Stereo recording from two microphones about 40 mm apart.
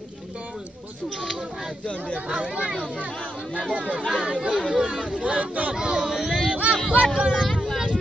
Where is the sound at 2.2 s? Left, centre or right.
Right.